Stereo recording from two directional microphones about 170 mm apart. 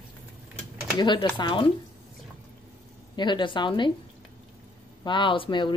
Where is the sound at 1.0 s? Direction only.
25° left (ahead or behind).